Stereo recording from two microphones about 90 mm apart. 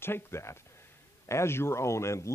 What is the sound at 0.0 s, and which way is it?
A man's voice, 25° left (ahead or behind).